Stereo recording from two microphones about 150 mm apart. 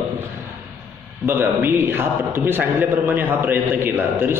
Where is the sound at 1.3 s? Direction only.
15° right (ahead or behind).